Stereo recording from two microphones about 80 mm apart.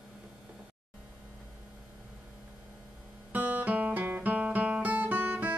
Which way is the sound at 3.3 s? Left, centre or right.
Centre.